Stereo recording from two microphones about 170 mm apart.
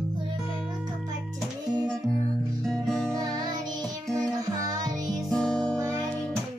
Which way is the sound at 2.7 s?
Centre (ahead or behind).